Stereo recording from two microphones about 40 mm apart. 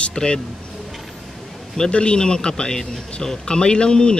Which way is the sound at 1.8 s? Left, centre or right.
Left.